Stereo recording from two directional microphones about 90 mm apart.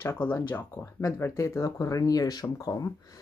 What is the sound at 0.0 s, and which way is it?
A woman's voice, 25° left (ahead or behind).